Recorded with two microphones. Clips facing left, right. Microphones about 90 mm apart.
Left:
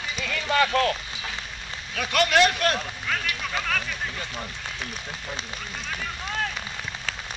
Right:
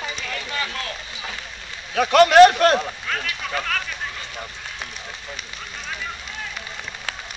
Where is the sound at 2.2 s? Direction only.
45° right (ahead or behind).